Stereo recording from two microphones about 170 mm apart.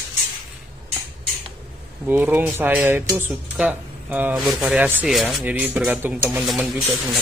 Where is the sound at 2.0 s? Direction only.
10° right (ahead or behind).